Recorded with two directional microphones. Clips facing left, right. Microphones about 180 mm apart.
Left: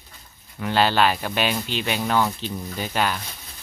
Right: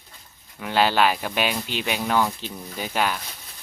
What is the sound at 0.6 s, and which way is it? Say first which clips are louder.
Speech: left 1 dB; 10° right (ahead or behind).